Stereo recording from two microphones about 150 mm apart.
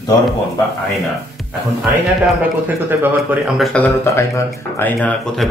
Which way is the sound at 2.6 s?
10° right (ahead or behind).